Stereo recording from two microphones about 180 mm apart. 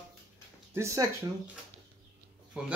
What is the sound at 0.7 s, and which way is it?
Speech, 15° right (ahead or behind).